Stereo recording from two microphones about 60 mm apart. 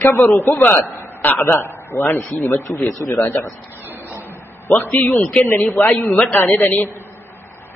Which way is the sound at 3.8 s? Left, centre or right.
Right.